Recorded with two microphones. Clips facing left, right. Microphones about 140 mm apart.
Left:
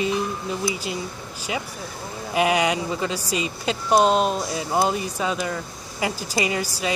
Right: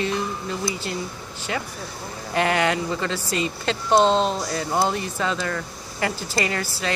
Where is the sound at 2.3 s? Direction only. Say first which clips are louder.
Left 1 dB; 15° left (ahead or behind).